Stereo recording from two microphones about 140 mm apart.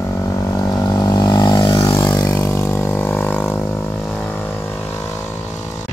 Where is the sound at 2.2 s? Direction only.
20° left (ahead or behind).